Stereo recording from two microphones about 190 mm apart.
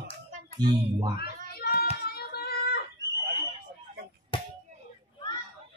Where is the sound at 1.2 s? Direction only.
55° left (ahead or behind).